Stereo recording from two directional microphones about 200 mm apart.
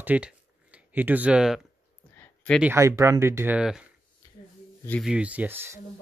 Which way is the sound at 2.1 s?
10° left (ahead or behind).